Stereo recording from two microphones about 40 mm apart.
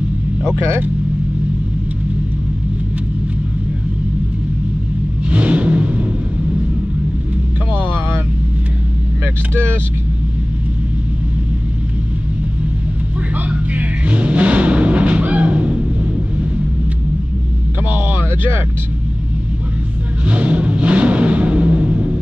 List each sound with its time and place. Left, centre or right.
5.3 s vehicle: right
7.7 s vehicle: right
13.5 s music: right
17.8 s a sound: right
20.2 s vehicle: right